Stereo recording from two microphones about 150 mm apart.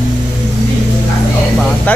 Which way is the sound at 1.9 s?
10° left (ahead or behind).